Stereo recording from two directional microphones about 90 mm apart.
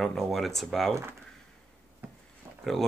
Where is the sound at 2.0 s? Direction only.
20° right (ahead or behind).